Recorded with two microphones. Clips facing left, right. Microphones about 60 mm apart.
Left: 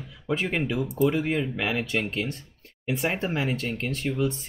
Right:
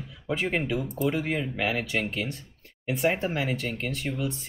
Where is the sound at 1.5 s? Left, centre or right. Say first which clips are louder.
Even; centre.